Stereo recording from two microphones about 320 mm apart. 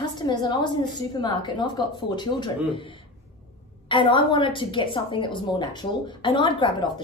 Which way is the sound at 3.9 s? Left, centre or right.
Centre.